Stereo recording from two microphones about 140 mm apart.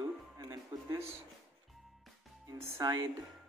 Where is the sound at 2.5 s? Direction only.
25° right (ahead or behind).